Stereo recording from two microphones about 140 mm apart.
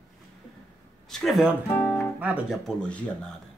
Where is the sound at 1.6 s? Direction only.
15° left (ahead or behind).